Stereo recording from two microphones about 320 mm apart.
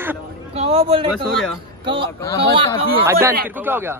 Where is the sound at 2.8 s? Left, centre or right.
Centre.